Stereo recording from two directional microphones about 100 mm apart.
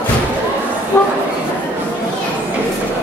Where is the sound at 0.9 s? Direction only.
25° left (ahead or behind).